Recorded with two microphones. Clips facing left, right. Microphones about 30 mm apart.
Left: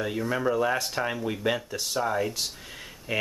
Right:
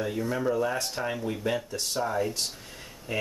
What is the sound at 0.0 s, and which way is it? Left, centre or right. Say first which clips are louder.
Speech: left 1 dB; left.